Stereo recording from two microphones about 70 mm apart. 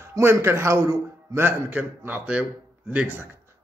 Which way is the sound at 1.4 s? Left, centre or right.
Right.